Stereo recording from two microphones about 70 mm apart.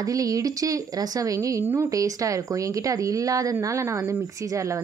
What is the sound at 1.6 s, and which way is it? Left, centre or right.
Speech, right.